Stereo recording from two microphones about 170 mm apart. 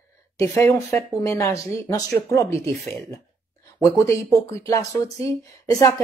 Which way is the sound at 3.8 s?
15° left (ahead or behind).